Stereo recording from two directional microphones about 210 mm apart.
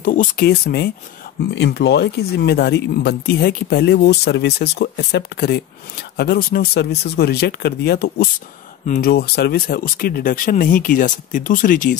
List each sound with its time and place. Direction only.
0.0 s speech: 40° left (ahead or behind)